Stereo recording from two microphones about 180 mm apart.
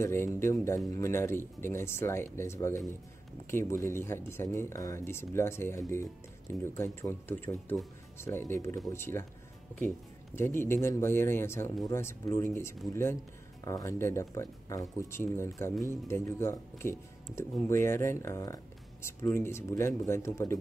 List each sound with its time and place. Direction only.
0.0 s speech: 15° left (ahead or behind)